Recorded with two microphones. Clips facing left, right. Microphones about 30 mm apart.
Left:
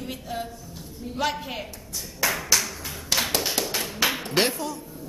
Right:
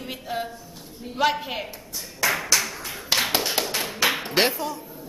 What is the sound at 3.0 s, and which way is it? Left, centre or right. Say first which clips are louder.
Tap: right 2 dB; centre.